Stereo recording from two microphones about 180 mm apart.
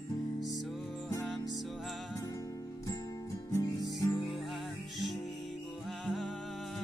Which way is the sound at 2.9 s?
20° left (ahead or behind).